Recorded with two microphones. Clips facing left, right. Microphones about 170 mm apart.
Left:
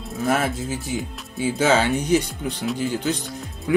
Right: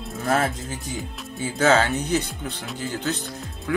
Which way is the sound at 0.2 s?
5° left (ahead or behind).